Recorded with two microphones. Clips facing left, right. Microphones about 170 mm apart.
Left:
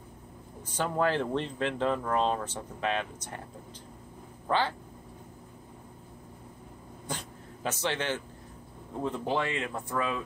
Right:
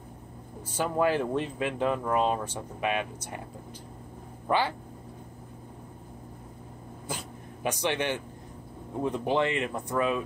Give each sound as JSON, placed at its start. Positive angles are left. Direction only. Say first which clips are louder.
{"t": 0.7, "sound": "speech", "louder": "right 2 dB", "side_deg": -10}
{"t": 4.5, "sound": "speech", "louder": "right 2 dB", "side_deg": -10}
{"t": 7.1, "sound": "dog", "louder": "right 1 dB", "side_deg": -10}
{"t": 9.0, "sound": "speech", "louder": "right 4 dB", "side_deg": -15}